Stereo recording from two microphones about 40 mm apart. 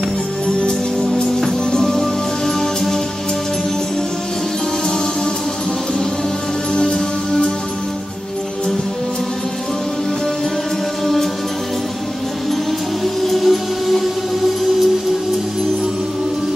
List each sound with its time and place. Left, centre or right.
0.6 s music: left
6.7 s music: centre
13.0 s music: centre